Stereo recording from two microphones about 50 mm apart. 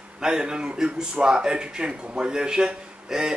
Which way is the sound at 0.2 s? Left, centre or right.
Centre.